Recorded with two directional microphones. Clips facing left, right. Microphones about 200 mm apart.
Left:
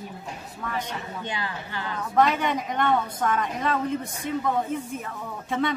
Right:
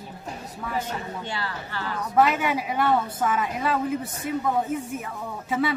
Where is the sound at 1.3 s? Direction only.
15° left (ahead or behind).